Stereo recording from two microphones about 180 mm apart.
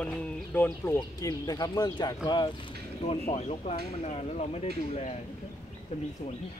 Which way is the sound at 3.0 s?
35° left (ahead or behind).